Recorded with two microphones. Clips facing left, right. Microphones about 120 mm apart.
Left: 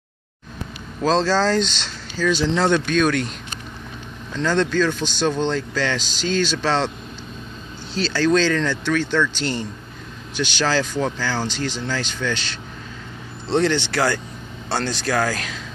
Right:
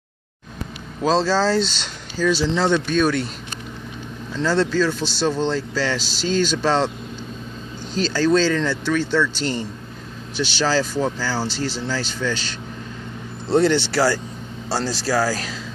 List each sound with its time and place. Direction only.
1.0 s speech: 10° right (ahead or behind)
4.3 s speech: 5° right (ahead or behind)
5.9 s speech: 40° right (ahead or behind)
6.6 s speech: 10° right (ahead or behind)
8.1 s speech: 10° right (ahead or behind)
9.3 s speech: 40° right (ahead or behind)
10.6 s speech: 5° right (ahead or behind)
11.4 s speech: 35° right (ahead or behind)
12.2 s speech: 10° right (ahead or behind)
13.5 s speech: 10° right (ahead or behind)